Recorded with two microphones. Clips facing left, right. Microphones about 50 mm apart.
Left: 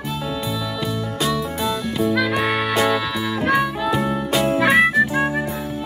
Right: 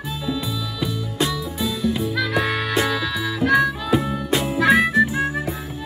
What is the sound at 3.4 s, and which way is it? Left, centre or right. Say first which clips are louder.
Harmonica: right 2 dB; centre.